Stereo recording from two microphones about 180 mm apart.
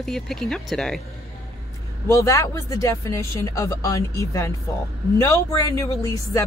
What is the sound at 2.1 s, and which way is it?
Speech, 15° left (ahead or behind).